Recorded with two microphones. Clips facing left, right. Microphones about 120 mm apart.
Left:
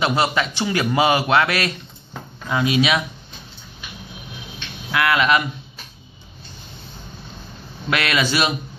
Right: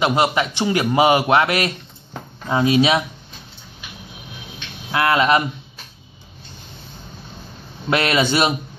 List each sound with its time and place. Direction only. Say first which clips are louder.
0.0 s a man's voice: right 2 dB; 20° right (ahead or behind)
2.4 s speech: right 3 dB; 35° right (ahead or behind)
4.9 s speech: right 2 dB; 30° right (ahead or behind)
7.9 s a man's voice: right 3 dB; 30° right (ahead or behind)